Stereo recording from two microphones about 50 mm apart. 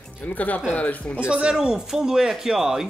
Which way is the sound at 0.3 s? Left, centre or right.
Left.